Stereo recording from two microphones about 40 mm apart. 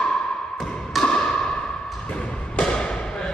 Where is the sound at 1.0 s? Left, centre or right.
Centre.